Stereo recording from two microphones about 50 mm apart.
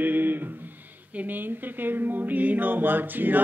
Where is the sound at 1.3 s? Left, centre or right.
Right.